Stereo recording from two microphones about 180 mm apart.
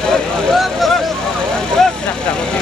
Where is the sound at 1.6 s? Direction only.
5° left (ahead or behind).